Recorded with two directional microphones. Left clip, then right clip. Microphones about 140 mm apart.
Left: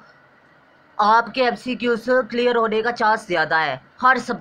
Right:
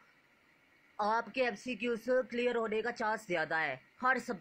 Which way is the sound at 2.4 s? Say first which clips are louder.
Left 15 dB; 25° right (ahead or behind).